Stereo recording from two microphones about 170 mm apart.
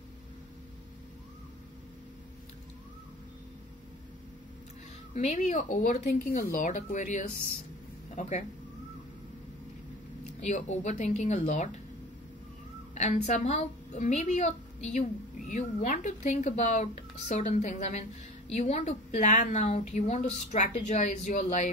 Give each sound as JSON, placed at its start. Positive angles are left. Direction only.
{"t": 5.1, "sound": "a woman's voice", "side_deg": 45}
{"t": 10.4, "sound": "a woman's voice", "side_deg": 45}
{"t": 12.9, "sound": "a woman's voice", "side_deg": 40}